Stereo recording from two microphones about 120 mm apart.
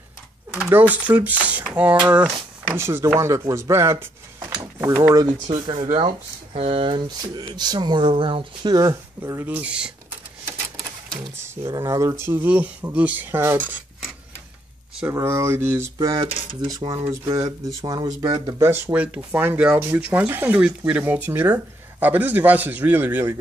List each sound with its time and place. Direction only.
0.7 s speech: 15° right (ahead or behind)
2.8 s speech: 20° right (ahead or behind)
5.7 s speech: 50° right (ahead or behind); by 8.9 s 35° right (ahead or behind)
9.2 s speech: 20° right (ahead or behind)
11.6 s speech: 30° right (ahead or behind)
15.0 s speech: 20° right (ahead or behind)
16.3 s speech: 50° right (ahead or behind)
16.7 s speech: 35° right (ahead or behind)
18.5 s speech: 25° right (ahead or behind)